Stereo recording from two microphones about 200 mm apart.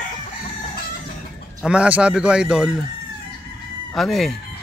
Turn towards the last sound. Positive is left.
turn(degrees=0)  # may be behind; listen again after turning